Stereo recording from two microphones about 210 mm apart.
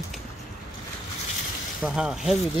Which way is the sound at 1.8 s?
5° right (ahead or behind).